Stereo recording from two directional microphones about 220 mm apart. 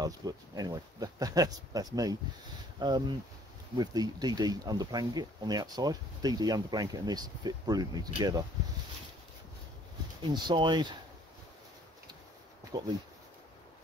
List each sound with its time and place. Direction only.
0.0 s speech: 15° right (ahead or behind)
10.3 s speech: 20° right (ahead or behind)